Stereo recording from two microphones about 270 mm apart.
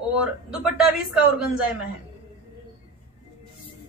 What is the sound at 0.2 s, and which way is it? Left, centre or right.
A woman's voice, centre.